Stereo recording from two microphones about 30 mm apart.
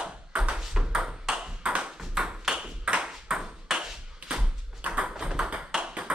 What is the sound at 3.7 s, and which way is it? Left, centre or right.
Ping, centre.